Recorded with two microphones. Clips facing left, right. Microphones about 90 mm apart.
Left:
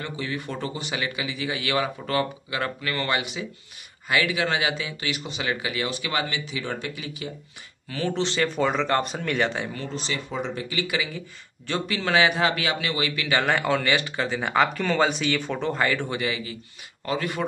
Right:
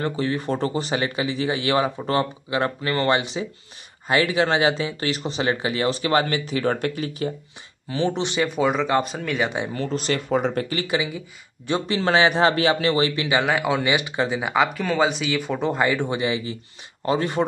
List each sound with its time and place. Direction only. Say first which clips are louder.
0.0 s speech: right 7 dB; 35° right (ahead or behind)
7.9 s speech: right 3 dB; 20° right (ahead or behind)
8.5 s speech: right 3 dB; 5° right (ahead or behind)
9.8 s speech: right 7 dB; 50° right (ahead or behind)
11.1 s speech: right 2 dB; 20° right (ahead or behind)
11.8 s speech: right 3 dB; 30° right (ahead or behind)
13.4 s speech: even; 5° right (ahead or behind)
14.4 s speech: left 3 dB; 5° right (ahead or behind); by 17.5 s 30° right (ahead or behind)